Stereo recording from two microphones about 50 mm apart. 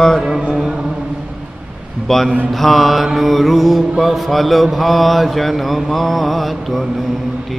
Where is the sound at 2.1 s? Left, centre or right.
Centre.